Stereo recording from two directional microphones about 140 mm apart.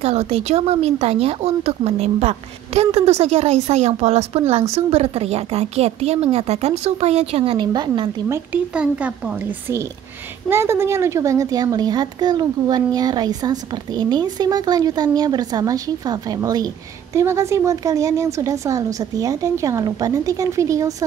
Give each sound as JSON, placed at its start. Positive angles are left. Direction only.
{"t": 0.0, "sound": "speech", "side_deg": -45}
{"t": 7.6, "sound": "a woman's voice", "side_deg": -30}
{"t": 8.7, "sound": "a woman's voice", "side_deg": -5}